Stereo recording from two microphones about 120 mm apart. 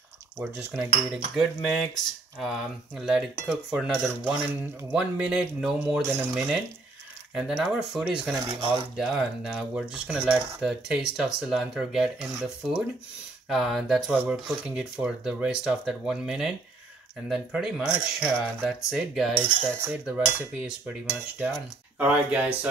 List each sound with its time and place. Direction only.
0.4 s cutlery: 20° right (ahead or behind)
1.1 s speech: centre (ahead or behind)
8.5 s speech: 45° right (ahead or behind)
8.9 s speech: 5° right (ahead or behind)
14.1 s speech: 10° right (ahead or behind)